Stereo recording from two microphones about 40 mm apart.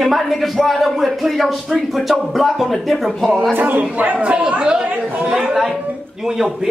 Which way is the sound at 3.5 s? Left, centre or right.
Right.